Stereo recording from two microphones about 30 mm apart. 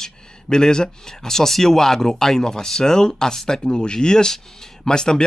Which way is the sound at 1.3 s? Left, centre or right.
Centre.